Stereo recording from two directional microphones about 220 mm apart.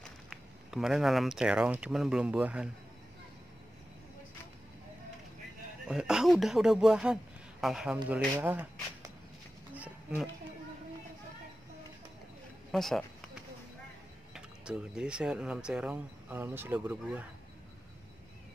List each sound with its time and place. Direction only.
0.0 s speech: centre (ahead or behind)
5.9 s speech: 5° right (ahead or behind)
12.7 s a sound: centre (ahead or behind)
14.3 s speech: 5° right (ahead or behind)